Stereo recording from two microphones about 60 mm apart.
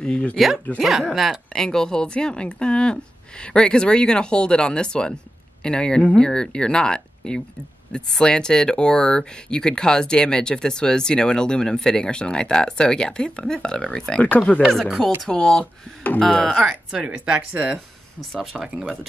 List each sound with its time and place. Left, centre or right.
0.4 s speech: centre
1.5 s speech: centre
14.2 s speech: left
14.7 s speech: centre
16.6 s speech: centre
18.4 s speech: centre